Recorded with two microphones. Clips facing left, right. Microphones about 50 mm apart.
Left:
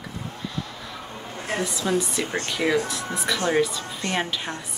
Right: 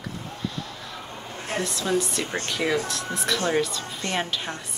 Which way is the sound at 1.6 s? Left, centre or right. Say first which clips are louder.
Even; centre.